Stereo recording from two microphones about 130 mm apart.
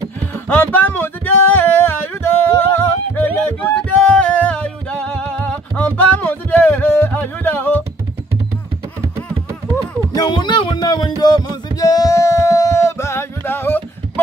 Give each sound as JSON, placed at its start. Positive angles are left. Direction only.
{"t": 0.5, "sound": "music", "side_deg": 15}
{"t": 10.1, "sound": "music", "side_deg": 35}